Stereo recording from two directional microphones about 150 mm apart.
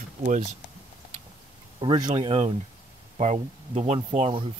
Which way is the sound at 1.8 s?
30° right (ahead or behind).